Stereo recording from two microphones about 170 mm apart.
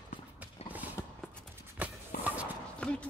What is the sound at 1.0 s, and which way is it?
Clip-clop, 15° left (ahead or behind).